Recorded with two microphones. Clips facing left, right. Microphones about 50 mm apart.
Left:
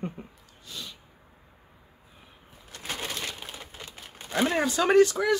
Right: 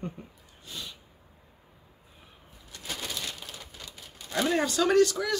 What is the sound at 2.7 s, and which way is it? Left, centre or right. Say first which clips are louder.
Bird: left 3 dB; left.